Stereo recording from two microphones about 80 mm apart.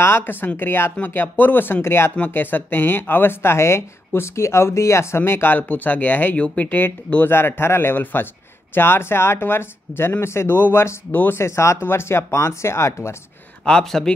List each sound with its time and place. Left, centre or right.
0.0 s speech: left
13.7 s speech: centre